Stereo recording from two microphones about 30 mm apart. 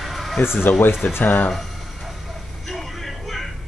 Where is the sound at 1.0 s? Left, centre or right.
Left.